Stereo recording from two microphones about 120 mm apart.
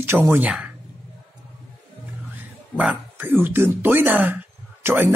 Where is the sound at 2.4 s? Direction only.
10° right (ahead or behind).